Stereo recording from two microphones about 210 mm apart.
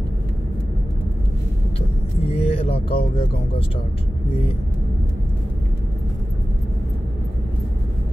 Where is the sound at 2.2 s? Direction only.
25° left (ahead or behind).